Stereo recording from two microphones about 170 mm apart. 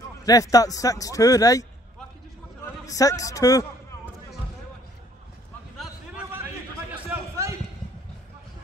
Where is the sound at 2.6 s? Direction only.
20° left (ahead or behind).